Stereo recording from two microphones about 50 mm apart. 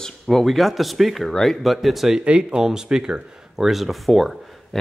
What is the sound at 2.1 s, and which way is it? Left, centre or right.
Speech, centre.